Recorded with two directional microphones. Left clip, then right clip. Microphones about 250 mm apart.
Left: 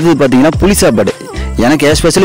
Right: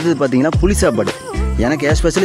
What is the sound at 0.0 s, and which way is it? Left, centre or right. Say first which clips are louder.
Speech: left 7 dB; left.